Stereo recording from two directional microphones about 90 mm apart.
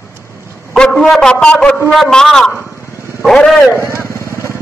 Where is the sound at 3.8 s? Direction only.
30° left (ahead or behind).